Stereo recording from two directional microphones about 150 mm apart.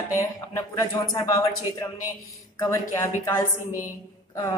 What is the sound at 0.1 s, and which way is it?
Speech, 20° left (ahead or behind).